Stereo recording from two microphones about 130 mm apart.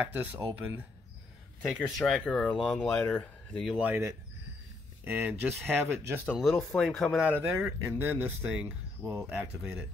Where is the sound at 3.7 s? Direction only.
15° right (ahead or behind).